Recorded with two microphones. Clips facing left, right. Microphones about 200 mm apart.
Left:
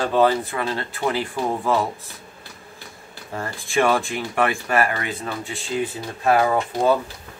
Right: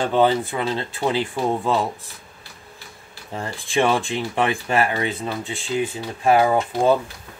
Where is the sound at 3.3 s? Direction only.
20° right (ahead or behind).